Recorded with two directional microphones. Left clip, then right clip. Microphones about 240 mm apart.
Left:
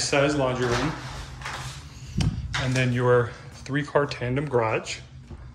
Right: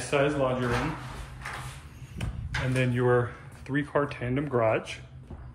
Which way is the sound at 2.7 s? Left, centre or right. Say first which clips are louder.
Left 3 dB; centre.